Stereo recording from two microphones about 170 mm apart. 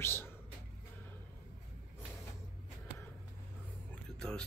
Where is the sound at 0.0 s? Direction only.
15° left (ahead or behind).